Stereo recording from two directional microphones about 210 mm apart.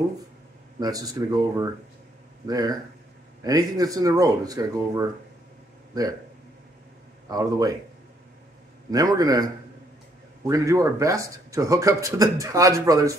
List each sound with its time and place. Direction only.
0.7 s a man's voice: 15° right (ahead or behind)
7.2 s a man's voice: 20° right (ahead or behind)
8.9 s a man's voice: 15° right (ahead or behind)